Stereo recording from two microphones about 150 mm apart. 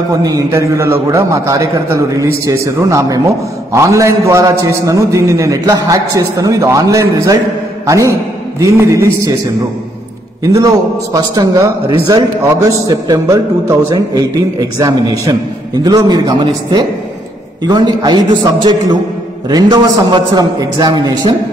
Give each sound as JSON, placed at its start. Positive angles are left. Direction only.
{"t": 0.1, "sound": "a man's voice", "side_deg": -25}
{"t": 10.4, "sound": "a man's voice", "side_deg": -25}